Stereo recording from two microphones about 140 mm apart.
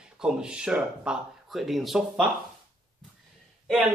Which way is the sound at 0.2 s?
5° right (ahead or behind).